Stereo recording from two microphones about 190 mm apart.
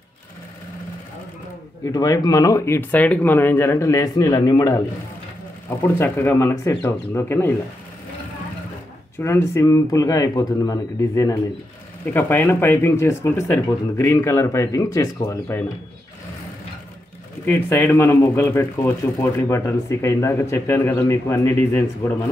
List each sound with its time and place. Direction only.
1.9 s speech: 20° left (ahead or behind)
9.2 s speech: 15° left (ahead or behind)
17.5 s speech: 10° left (ahead or behind)